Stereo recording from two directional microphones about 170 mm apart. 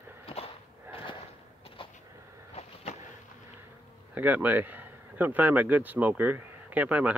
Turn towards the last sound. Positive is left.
turn(degrees=-10)  # may be behind; listen again after turning